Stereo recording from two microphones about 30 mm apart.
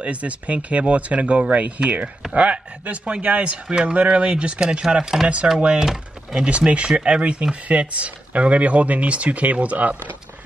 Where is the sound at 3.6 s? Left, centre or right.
Right.